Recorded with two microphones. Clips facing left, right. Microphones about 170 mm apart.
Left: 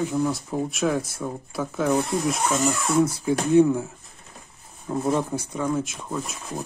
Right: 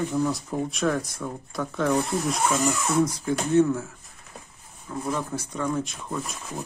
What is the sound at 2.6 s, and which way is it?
Speech, 10° left (ahead or behind).